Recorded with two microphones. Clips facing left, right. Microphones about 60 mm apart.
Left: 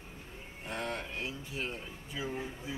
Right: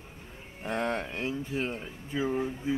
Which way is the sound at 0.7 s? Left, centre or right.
Right.